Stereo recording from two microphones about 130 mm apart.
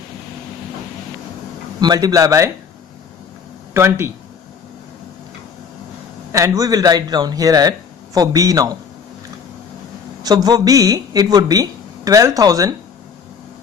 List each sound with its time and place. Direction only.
1.8 s speech: 30° right (ahead or behind)
3.7 s speech: 20° right (ahead or behind)
6.3 s speech: 25° right (ahead or behind)
10.2 s speech: 30° right (ahead or behind)